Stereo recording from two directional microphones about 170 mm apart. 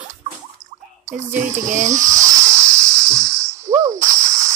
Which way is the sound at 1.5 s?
45° right (ahead or behind).